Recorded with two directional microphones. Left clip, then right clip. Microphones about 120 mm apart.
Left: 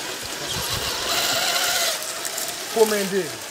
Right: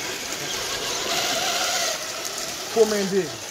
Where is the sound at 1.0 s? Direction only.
5° left (ahead or behind).